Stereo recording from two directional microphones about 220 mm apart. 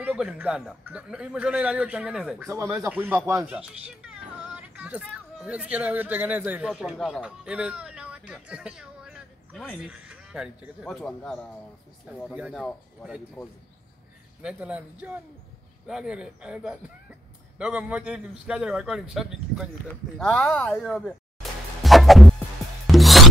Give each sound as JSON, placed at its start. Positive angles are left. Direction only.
{"t": 0.0, "sound": "a man's voice", "side_deg": -5}
{"t": 20.2, "sound": "music", "side_deg": 5}